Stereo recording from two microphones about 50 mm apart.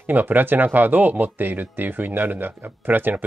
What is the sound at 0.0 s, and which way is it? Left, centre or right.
Speech, right.